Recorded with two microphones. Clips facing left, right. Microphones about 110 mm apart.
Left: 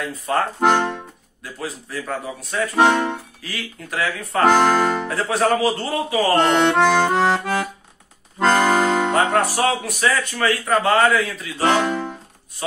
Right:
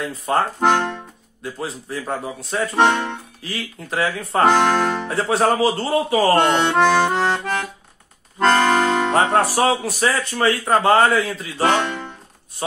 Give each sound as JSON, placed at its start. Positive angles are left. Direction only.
{"t": 0.6, "sound": "accordion", "side_deg": 0}
{"t": 1.4, "sound": "a man's voice", "side_deg": -25}
{"t": 2.8, "sound": "accordion", "side_deg": 5}
{"t": 3.4, "sound": "a man's voice", "side_deg": -30}
{"t": 4.5, "sound": "accordion", "side_deg": 5}
{"t": 5.0, "sound": "speech", "side_deg": -30}
{"t": 6.3, "sound": "accordion", "side_deg": 0}
{"t": 9.3, "sound": "speech", "side_deg": -35}
{"t": 11.6, "sound": "speech", "side_deg": 0}